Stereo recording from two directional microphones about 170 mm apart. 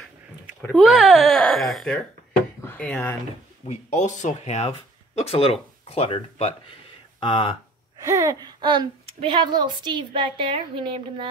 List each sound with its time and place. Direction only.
0.7 s speech: centre (ahead or behind)
3.6 s speech: 45° left (ahead or behind)
8.0 s a woman's voice: 20° right (ahead or behind)